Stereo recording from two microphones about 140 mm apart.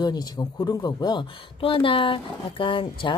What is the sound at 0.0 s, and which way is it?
Speech, 30° left (ahead or behind).